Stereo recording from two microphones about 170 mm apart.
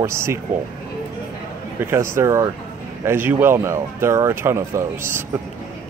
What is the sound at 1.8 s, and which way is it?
Speech, 15° right (ahead or behind).